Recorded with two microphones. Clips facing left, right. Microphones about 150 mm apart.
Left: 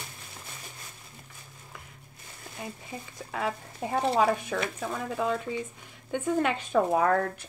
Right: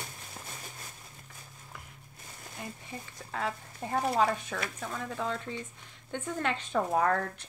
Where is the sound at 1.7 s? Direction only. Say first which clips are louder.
Left 1 dB; centre (ahead or behind).